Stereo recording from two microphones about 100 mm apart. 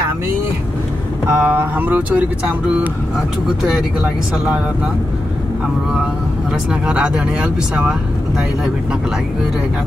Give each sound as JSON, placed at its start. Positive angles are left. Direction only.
{"t": 1.3, "sound": "speech", "side_deg": -20}
{"t": 6.7, "sound": "speech", "side_deg": -10}